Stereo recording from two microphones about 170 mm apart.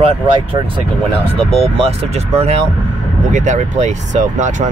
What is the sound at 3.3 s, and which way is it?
Speech, 45° right (ahead or behind).